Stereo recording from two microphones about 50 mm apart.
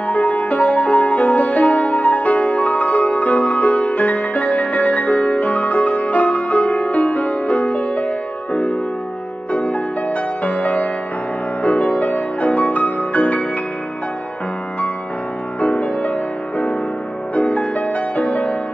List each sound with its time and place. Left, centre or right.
0.2 s music: centre
0.5 s music: left
9.7 s music: left
15.6 s music: left
17.4 s music: left